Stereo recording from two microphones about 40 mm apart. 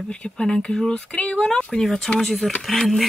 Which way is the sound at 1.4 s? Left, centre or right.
Centre.